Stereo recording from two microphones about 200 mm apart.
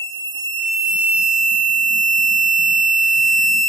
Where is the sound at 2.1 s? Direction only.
Centre (ahead or behind).